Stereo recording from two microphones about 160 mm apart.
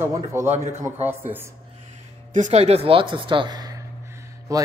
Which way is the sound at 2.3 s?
50° right (ahead or behind).